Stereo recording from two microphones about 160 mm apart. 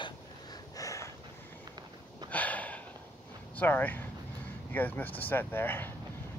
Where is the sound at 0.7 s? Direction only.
20° left (ahead or behind).